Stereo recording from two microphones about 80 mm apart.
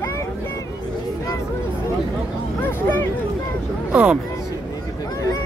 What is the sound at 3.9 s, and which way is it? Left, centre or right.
Speech, centre.